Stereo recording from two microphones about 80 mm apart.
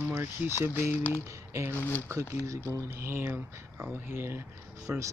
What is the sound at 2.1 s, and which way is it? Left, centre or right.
Speech, right.